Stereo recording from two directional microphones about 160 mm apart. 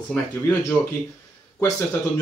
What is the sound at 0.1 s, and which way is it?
Speech, 15° left (ahead or behind).